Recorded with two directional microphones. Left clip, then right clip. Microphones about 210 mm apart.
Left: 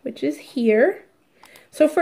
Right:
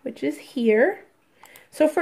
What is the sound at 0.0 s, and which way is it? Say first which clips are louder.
Speech: left 2 dB; 5° right (ahead or behind).